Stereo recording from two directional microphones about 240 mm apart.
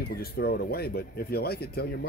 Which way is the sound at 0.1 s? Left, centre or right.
Left.